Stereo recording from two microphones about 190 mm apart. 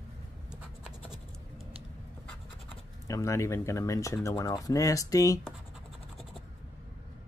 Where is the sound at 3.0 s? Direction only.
15° left (ahead or behind).